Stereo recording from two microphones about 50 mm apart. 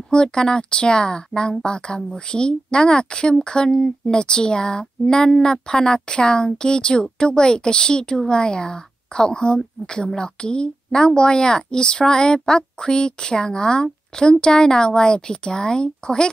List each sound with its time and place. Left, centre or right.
0.1 s a woman's voice: centre